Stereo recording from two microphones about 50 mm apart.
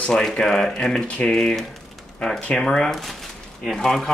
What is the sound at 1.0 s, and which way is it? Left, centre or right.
Speech, left.